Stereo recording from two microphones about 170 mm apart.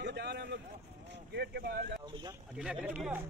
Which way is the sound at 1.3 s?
75° right (ahead or behind).